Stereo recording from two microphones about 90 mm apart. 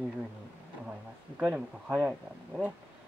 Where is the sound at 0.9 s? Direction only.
10° right (ahead or behind).